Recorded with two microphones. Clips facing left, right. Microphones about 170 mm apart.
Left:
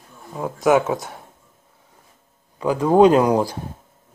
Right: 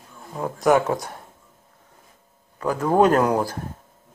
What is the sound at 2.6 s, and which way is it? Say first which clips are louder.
Speech: left 4 dB; 10° left (ahead or behind).